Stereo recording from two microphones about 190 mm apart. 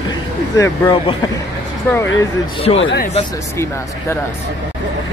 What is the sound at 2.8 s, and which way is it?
Speech, 65° left (ahead or behind).